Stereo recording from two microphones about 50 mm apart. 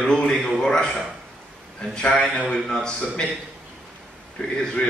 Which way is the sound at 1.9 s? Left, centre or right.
Centre.